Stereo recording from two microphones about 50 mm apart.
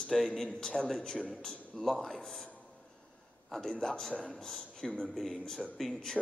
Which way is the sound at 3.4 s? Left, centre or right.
Centre.